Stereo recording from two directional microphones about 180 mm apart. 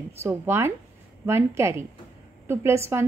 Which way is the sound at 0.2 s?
15° right (ahead or behind).